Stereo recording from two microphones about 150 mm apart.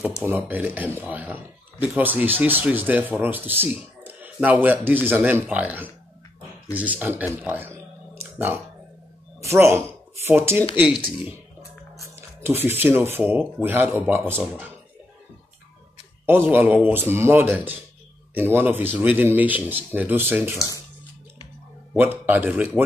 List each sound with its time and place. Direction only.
0.2 s speech: 15° right (ahead or behind)
7.4 s a sound: 15° right (ahead or behind)
9.4 s speech: 20° right (ahead or behind)
16.3 s speech: 15° right (ahead or behind)
20.5 s speech: 20° left (ahead or behind)
21.9 s speech: 15° right (ahead or behind)